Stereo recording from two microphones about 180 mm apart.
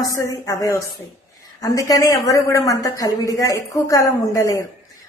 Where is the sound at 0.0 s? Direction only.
20° left (ahead or behind).